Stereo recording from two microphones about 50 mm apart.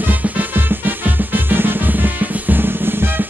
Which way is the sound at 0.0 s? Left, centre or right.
Right.